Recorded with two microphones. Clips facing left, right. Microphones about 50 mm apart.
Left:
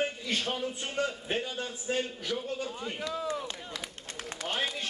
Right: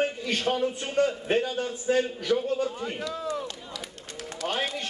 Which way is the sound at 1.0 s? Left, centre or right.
Right.